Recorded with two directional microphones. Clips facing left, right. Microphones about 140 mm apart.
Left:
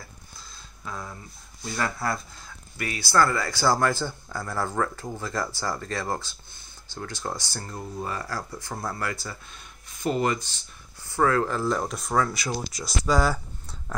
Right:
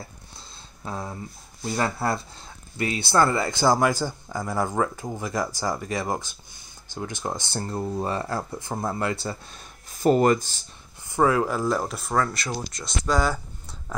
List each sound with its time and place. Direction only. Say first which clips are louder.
0.8 s speech: right 4 dB; 35° right (ahead or behind)
11.1 s speech: right 2 dB; 15° right (ahead or behind); by 13.4 s 5° left (ahead or behind)